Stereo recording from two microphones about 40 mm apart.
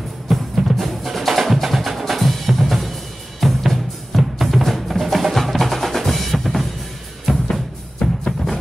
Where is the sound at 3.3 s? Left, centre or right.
Centre.